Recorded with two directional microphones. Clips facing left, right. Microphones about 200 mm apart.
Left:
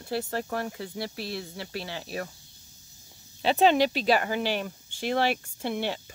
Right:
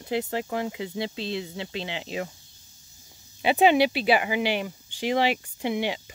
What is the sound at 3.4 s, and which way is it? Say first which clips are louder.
Speech: right 2 dB; 10° right (ahead or behind).